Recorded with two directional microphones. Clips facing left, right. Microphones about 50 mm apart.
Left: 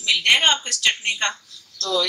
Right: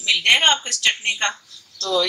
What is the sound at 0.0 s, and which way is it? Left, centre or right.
A woman's voice, centre.